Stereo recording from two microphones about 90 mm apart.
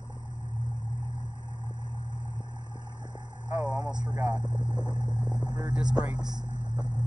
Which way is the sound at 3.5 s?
15° right (ahead or behind).